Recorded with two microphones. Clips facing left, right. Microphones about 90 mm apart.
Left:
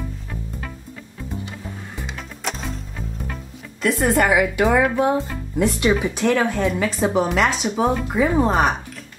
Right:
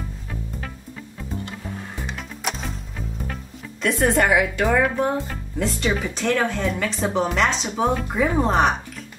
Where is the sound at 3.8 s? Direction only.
Centre (ahead or behind).